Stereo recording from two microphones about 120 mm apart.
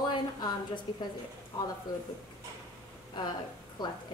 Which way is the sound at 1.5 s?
40° left (ahead or behind).